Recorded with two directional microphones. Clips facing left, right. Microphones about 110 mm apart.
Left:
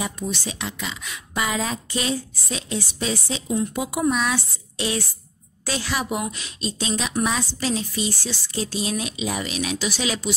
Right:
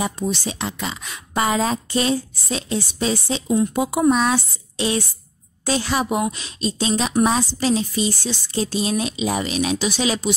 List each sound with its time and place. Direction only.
0.0 s a woman's voice: 35° right (ahead or behind)